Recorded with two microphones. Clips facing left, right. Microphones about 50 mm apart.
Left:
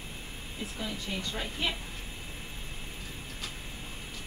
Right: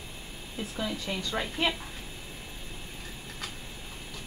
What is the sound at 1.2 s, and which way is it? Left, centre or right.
Speech, right.